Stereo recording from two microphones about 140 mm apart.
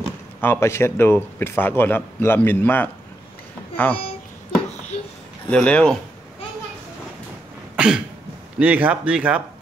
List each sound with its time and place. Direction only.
0.4 s speech: 15° left (ahead or behind)
5.5 s speech: 5° left (ahead or behind)
7.7 s cough: 5° right (ahead or behind)
8.5 s speech: 10° right (ahead or behind)